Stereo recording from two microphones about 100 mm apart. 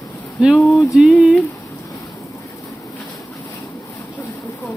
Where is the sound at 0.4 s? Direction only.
Centre (ahead or behind).